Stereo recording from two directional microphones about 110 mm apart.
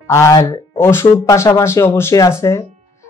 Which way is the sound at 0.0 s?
25° left (ahead or behind).